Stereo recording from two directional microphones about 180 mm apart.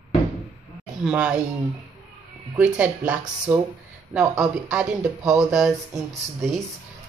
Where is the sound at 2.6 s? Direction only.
5° right (ahead or behind).